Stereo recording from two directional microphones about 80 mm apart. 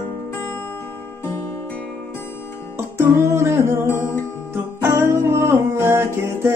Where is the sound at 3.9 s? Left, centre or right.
Left.